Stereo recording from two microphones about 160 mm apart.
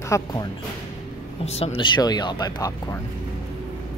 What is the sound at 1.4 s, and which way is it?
Speech, 40° left (ahead or behind).